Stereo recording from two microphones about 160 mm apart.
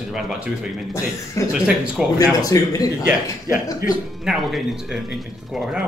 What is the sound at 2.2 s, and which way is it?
Speech, 20° left (ahead or behind).